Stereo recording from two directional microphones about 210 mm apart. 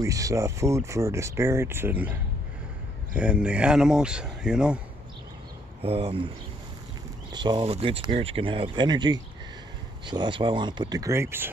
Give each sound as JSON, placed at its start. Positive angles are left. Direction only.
{"t": 0.0, "sound": "speech", "side_deg": -15}
{"t": 5.8, "sound": "speech", "side_deg": -25}
{"t": 7.3, "sound": "speech", "side_deg": -20}